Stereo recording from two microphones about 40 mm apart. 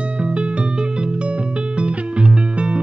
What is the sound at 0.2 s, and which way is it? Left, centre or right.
Music, right.